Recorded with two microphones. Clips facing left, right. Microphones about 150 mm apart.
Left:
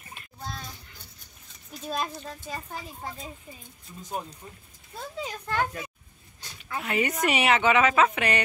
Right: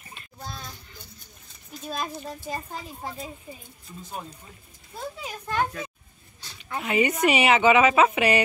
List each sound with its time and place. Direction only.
2.1 s speech: 15° right (ahead or behind)
5.3 s speech: 15° right (ahead or behind)
6.8 s speech: centre (ahead or behind)